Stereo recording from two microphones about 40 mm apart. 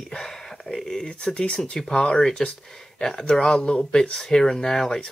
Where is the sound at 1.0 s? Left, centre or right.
Left.